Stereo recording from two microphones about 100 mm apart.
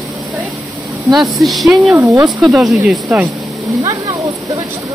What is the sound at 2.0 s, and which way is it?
Speech, 30° right (ahead or behind).